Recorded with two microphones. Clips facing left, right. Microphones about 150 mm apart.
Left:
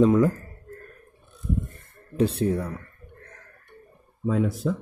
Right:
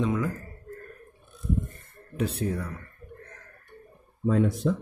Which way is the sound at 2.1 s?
30° left (ahead or behind).